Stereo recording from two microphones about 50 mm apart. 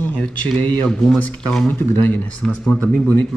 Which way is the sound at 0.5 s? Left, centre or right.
Left.